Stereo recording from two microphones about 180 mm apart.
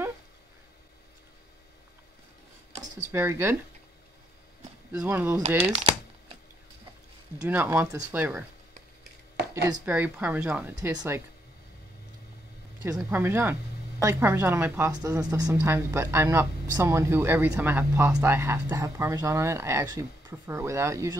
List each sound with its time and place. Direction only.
2.8 s speech: 15° right (ahead or behind)
4.9 s speech: 10° right (ahead or behind)
5.7 s typing: 35° right (ahead or behind)
7.4 s speech: 10° right (ahead or behind)
9.8 s speech: 10° right (ahead or behind)
12.8 s speech: 15° right (ahead or behind)